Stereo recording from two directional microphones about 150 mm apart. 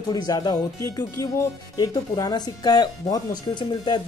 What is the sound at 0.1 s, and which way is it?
Speech, 25° left (ahead or behind).